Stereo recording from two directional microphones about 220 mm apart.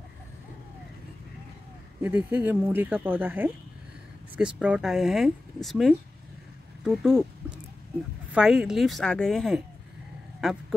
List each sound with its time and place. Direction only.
2.0 s speech: 10° right (ahead or behind)
6.8 s a sound: centre (ahead or behind)
8.3 s speech: centre (ahead or behind)